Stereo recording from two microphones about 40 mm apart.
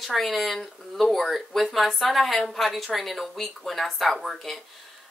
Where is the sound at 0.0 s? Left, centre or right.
Centre.